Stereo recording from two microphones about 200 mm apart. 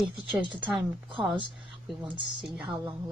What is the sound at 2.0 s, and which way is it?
Speech, 25° right (ahead or behind).